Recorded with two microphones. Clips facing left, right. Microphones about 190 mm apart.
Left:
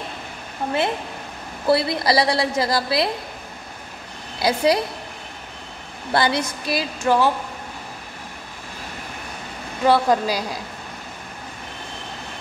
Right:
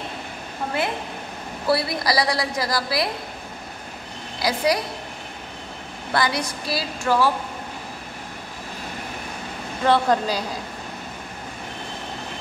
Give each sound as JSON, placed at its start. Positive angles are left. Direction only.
{"t": 1.7, "sound": "a woman's voice", "side_deg": 25}
{"t": 4.4, "sound": "a woman's voice", "side_deg": 25}
{"t": 6.1, "sound": "a woman's voice", "side_deg": 25}
{"t": 9.8, "sound": "a woman's voice", "side_deg": 10}